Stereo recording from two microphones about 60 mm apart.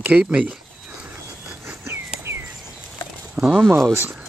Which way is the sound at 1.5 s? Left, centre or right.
Right.